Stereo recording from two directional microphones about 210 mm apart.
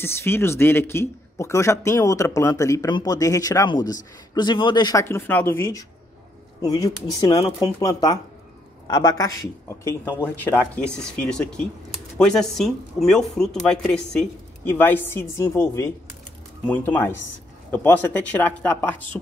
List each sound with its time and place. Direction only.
0.0 s a man's voice: 10° left (ahead or behind)